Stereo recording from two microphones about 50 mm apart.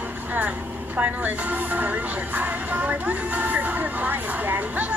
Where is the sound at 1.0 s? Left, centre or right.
Right.